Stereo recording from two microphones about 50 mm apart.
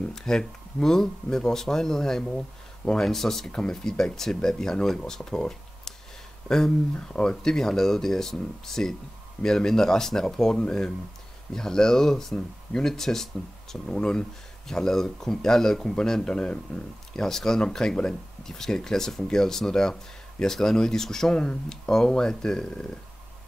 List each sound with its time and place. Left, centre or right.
0.1 s speech: centre
17.1 s speech: centre